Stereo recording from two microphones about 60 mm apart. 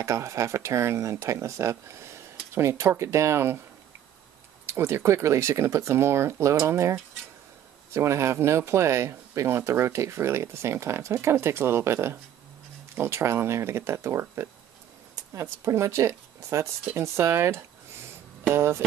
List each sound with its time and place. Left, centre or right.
0.0 s speech: right
4.6 s speech: right
15.6 s speech: right